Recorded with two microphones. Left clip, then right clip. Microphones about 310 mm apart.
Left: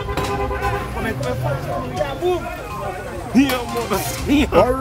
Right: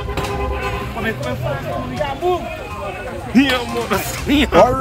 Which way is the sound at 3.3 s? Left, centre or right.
Centre.